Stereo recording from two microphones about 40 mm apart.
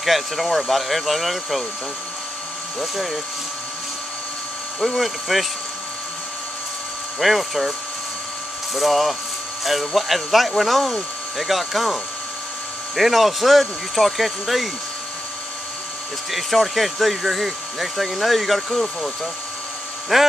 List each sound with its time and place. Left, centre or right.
0.0 s speech: centre
2.8 s speech: centre
4.9 s speech: centre
7.2 s speech: centre
8.7 s speech: centre
16.3 s speech: centre
20.1 s speech: centre